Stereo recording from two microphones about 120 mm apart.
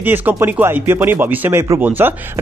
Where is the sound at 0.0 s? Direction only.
15° right (ahead or behind).